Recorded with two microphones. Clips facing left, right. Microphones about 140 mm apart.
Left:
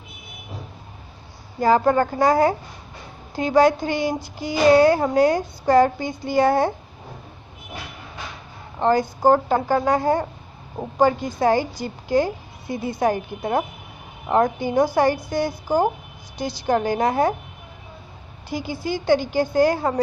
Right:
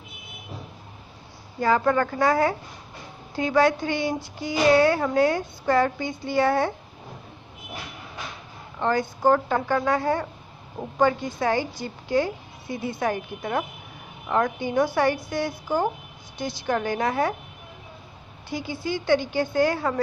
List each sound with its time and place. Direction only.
1.6 s speech: 35° left (ahead or behind)
8.7 s speech: 35° left (ahead or behind)
18.6 s speech: 40° left (ahead or behind)